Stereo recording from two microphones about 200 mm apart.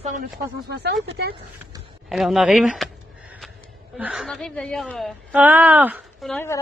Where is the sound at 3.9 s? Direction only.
5° right (ahead or behind).